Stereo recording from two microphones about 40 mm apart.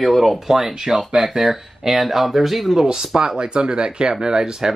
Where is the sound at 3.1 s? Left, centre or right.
Right.